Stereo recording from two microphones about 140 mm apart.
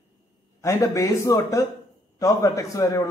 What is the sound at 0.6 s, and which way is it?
A man's voice, 20° left (ahead or behind).